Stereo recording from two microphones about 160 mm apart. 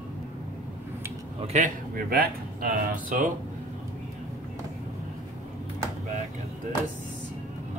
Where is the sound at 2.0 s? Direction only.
60° right (ahead or behind).